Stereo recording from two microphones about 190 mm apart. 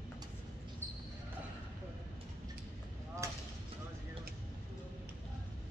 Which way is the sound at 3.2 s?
15° right (ahead or behind).